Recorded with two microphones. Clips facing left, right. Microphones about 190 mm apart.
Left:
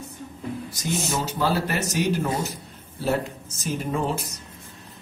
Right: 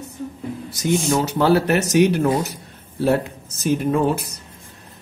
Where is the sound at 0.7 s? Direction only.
70° right (ahead or behind).